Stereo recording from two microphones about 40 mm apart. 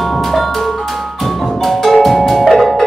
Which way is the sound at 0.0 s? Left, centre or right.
Centre.